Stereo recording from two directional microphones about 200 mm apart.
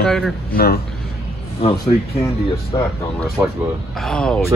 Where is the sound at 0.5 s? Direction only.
50° left (ahead or behind).